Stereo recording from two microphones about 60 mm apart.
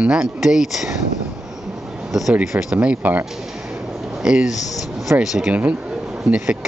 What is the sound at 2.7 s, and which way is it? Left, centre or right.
Speech, right.